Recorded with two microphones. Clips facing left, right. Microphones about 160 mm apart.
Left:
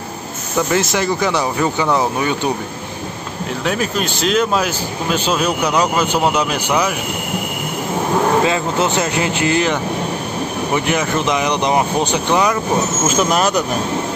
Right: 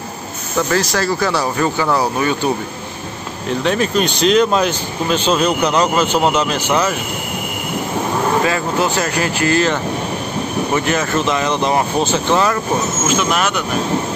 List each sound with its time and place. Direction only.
0.6 s speech: 20° left (ahead or behind)
3.6 s speech: 5° left (ahead or behind)
8.5 s speech: 20° left (ahead or behind)
13.1 s speech: 40° left (ahead or behind)